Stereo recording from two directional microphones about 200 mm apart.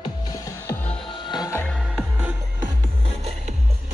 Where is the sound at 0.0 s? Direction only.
20° left (ahead or behind).